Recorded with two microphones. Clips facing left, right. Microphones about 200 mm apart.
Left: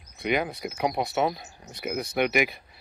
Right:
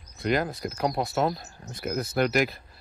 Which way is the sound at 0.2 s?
Centre (ahead or behind).